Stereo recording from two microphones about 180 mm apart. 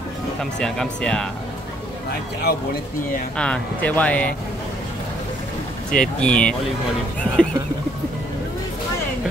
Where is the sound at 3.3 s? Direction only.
5° left (ahead or behind).